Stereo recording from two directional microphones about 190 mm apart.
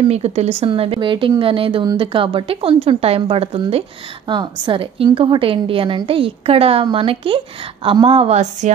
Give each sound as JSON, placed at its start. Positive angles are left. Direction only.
{"t": 0.1, "sound": "a woman's voice", "side_deg": -35}